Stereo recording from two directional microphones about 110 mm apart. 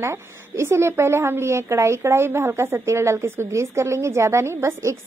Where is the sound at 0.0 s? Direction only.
25° right (ahead or behind).